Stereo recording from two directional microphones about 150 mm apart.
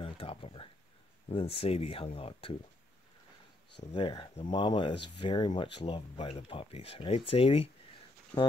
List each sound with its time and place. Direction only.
0.0 s a sound: 40° left (ahead or behind)
1.3 s speech: 40° left (ahead or behind)
3.9 s speech: 35° left (ahead or behind)